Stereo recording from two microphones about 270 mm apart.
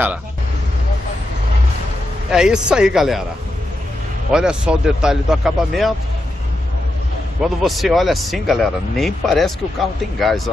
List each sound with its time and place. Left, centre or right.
2.3 s speech: centre
4.3 s speech: centre
7.4 s speech: centre